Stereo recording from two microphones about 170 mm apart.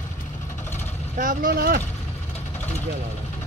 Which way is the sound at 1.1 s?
55° right (ahead or behind).